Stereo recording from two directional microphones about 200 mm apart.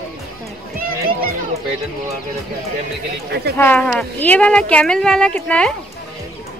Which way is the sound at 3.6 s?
10° left (ahead or behind).